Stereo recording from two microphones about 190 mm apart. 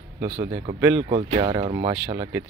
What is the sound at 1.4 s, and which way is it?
Speech, 20° right (ahead or behind).